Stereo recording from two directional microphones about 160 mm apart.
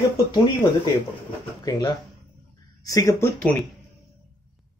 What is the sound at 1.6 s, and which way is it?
Speech, 25° left (ahead or behind).